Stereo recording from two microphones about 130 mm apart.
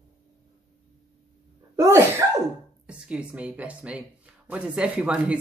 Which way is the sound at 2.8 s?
10° right (ahead or behind).